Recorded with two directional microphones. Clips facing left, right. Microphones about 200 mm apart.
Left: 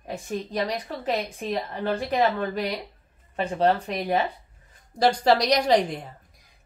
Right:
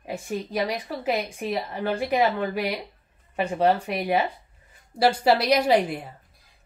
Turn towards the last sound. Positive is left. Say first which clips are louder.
# even
turn(degrees=-5)  # may be behind; listen again after turning